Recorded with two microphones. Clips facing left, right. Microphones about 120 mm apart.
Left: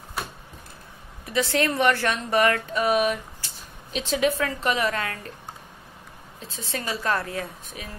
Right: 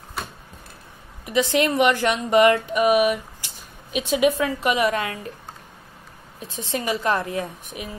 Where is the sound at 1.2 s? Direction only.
15° right (ahead or behind).